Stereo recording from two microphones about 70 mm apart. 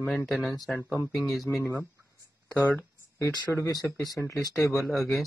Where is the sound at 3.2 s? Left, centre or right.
Left.